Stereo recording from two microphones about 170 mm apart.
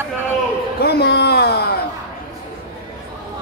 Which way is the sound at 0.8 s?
70° left (ahead or behind).